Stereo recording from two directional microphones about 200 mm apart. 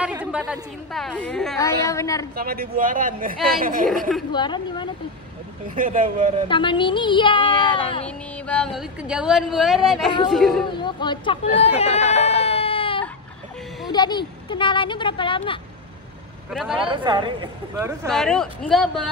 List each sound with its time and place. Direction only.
0.2 s speech: 5° right (ahead or behind)
1.6 s a woman's voice: 15° left (ahead or behind)
2.3 s speech: 50° right (ahead or behind)
3.9 s speech: centre (ahead or behind)
4.3 s speech: 25° left (ahead or behind)
5.8 s speech: 40° right (ahead or behind)
6.5 s speech: 25° left (ahead or behind)
8.5 s speech: 5° left (ahead or behind)
10.8 s speech: 25° left (ahead or behind)
16.4 s speech: 5° right (ahead or behind)
16.9 s speech: 25° right (ahead or behind)
18.1 s speech: 5° left (ahead or behind)